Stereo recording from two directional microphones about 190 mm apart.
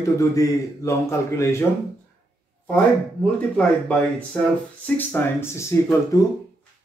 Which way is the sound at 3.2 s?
5° left (ahead or behind).